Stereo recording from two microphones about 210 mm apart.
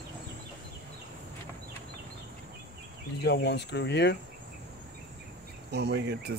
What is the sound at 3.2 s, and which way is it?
Speech, 55° left (ahead or behind).